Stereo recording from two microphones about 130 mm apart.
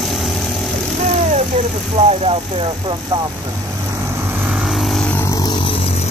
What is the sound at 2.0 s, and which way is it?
Speech, 50° right (ahead or behind).